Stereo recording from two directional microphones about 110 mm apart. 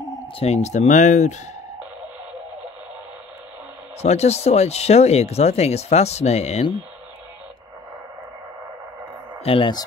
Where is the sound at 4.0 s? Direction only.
75° left (ahead or behind).